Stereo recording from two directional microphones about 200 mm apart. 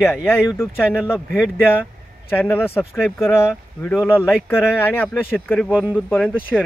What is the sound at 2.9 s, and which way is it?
Speech, centre (ahead or behind).